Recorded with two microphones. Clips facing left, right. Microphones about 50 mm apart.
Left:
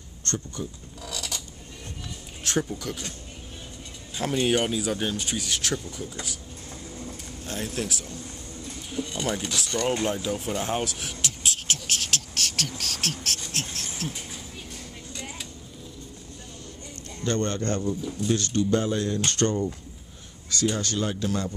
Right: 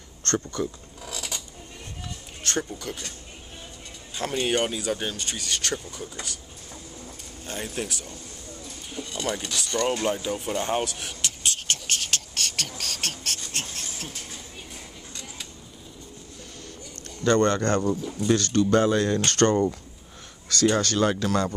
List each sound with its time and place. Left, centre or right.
0.2 s speech: right
1.0 s creak: right
2.4 s speech: centre
4.2 s speech: centre
7.4 s speech: centre
17.3 s speech: right